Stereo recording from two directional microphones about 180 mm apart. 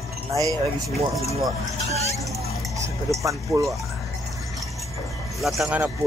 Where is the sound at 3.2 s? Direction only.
15° right (ahead or behind).